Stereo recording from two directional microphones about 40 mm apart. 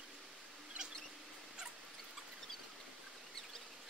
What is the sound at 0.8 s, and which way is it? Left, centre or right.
Rodents, right.